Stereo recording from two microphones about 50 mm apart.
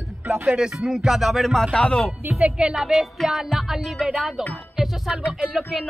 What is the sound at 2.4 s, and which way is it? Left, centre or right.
Speech, right.